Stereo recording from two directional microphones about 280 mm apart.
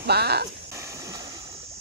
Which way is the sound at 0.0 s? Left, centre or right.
Right.